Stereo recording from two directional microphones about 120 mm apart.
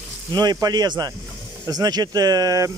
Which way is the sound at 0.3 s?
35° right (ahead or behind).